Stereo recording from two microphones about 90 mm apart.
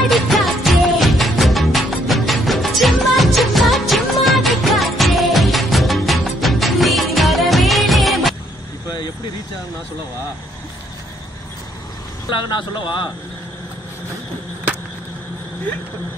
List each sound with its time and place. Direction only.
0.1 s music: centre (ahead or behind)
12.3 s a man's voice: 55° left (ahead or behind)